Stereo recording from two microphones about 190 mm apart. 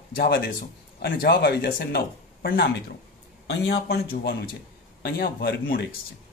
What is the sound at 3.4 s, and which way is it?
Speech, 65° left (ahead or behind).